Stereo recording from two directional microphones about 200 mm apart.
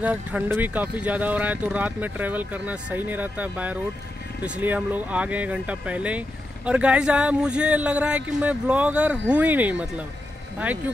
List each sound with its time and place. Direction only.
0.0 s speech: 5° right (ahead or behind)